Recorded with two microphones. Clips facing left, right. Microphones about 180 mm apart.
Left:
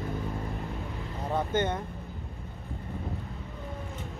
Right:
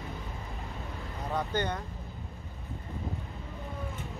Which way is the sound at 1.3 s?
25° left (ahead or behind).